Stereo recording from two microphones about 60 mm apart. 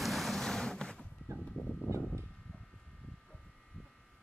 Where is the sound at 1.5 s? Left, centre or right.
Centre.